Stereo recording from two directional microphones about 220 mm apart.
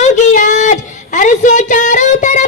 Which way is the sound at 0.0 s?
35° left (ahead or behind).